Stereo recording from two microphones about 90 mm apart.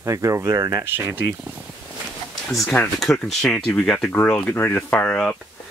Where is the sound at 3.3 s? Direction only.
5° left (ahead or behind).